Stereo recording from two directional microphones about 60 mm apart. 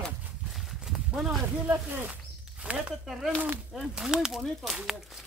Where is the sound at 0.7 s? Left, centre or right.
Centre.